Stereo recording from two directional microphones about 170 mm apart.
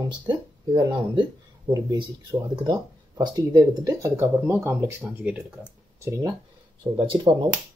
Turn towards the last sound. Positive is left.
turn(degrees=-30)  # may be behind; listen again after turning